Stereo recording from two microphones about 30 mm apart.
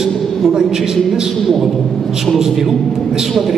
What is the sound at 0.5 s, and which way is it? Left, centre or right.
Speech, centre.